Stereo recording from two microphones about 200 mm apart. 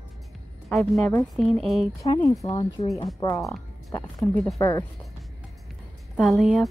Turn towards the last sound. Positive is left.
turn(degrees=0)  # may be behind; listen again after turning